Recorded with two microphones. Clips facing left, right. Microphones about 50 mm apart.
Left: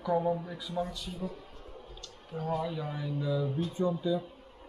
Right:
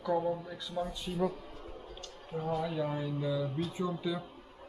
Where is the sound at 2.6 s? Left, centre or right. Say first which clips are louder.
Right 2 dB; centre.